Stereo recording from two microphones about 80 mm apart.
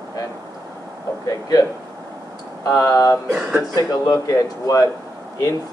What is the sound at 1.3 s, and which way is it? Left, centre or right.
Speech, left.